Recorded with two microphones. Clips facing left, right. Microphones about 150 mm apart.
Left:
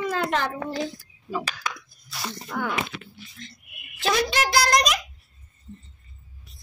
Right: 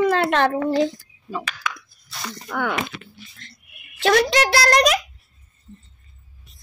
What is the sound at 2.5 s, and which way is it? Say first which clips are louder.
Speech: right 4 dB; 75° right (ahead or behind).